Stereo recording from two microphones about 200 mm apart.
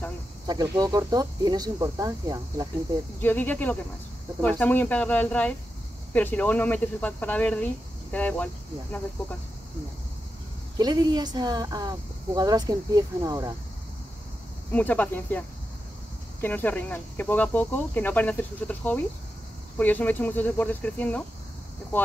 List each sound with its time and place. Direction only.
0.5 s speech: 20° right (ahead or behind)
3.2 s speech: 10° left (ahead or behind)
10.8 s speech: 20° right (ahead or behind)
14.7 s speech: 5° left (ahead or behind)